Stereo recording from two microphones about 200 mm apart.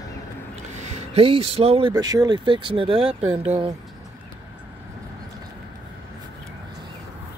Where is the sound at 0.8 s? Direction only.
30° right (ahead or behind).